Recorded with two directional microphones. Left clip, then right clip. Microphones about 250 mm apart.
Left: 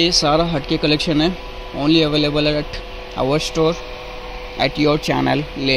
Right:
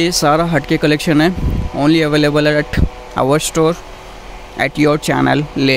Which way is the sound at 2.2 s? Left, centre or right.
Right.